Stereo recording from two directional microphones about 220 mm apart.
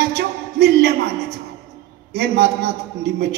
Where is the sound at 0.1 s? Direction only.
50° right (ahead or behind).